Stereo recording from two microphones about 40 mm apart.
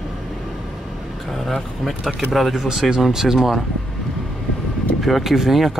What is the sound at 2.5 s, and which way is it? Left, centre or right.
Speech, centre.